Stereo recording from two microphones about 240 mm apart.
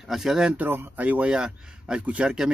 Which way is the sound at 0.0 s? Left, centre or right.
Centre.